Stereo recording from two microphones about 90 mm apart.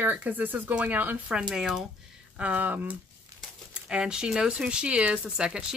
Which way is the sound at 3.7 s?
10° right (ahead or behind).